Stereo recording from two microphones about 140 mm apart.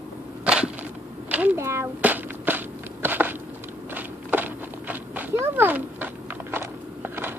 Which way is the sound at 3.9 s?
15° right (ahead or behind).